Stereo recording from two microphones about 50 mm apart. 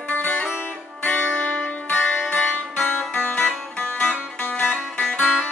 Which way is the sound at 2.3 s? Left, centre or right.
Left.